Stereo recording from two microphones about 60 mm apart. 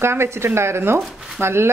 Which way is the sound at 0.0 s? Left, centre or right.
Right.